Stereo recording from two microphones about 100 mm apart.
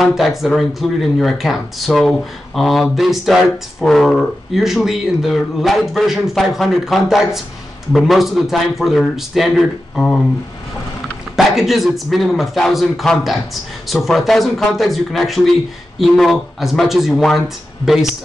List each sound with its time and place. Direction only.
0.0 s speech: centre (ahead or behind)
11.3 s speech: centre (ahead or behind)